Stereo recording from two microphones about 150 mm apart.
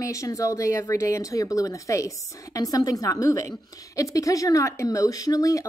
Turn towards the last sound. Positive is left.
turn(degrees=25)  # may be behind; listen again after turning